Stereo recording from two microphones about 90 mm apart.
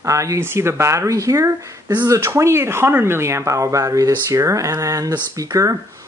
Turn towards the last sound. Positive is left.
turn(degrees=-40)  # may be behind; listen again after turning